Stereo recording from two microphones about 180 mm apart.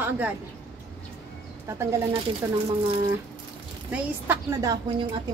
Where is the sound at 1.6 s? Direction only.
15° right (ahead or behind).